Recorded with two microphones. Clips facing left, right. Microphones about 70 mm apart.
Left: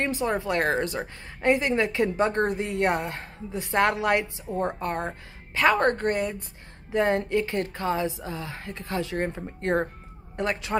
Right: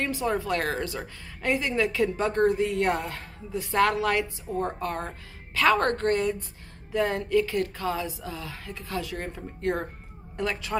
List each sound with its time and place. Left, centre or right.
0.0 s a woman's voice: left